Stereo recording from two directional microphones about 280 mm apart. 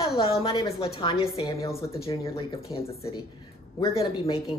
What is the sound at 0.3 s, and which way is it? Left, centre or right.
A woman's voice, centre.